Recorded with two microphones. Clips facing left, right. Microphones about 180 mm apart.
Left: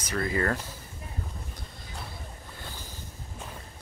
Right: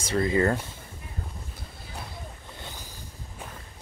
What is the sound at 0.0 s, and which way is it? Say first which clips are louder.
Speech: right 5 dB; 25° right (ahead or behind).